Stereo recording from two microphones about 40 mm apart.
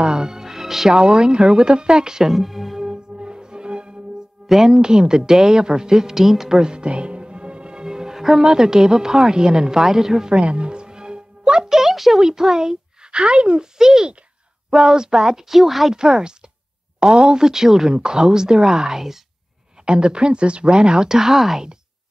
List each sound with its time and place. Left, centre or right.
0.0 s music: centre
0.9 s speech: right
2.3 s speech: centre
2.8 s music: right
4.6 s a woman's voice: centre
6.6 s music: right
8.4 s a woman's voice: centre
10.3 s music: right; by 12.2 s centre
12.2 s a woman's voice: centre
15.9 s a woman's voice: centre
19.8 s speech: right